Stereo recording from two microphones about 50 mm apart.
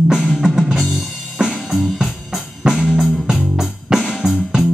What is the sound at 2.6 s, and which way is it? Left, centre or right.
Music, centre.